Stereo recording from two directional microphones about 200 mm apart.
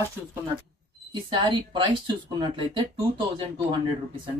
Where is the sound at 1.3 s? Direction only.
20° right (ahead or behind).